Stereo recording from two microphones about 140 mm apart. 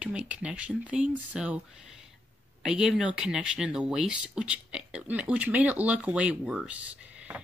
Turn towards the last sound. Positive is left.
turn(degrees=-5)  # may be behind; listen again after turning